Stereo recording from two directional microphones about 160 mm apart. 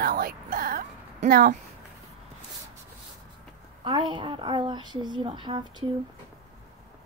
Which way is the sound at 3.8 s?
30° right (ahead or behind).